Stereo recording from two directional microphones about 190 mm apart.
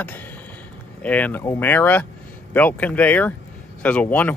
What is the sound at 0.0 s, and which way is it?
Speech, 10° left (ahead or behind).